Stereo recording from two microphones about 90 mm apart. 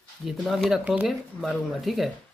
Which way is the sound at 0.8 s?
10° right (ahead or behind).